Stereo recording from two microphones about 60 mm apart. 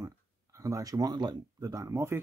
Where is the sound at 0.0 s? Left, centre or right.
Right.